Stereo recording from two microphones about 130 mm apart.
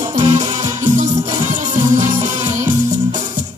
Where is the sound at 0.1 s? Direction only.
65° right (ahead or behind).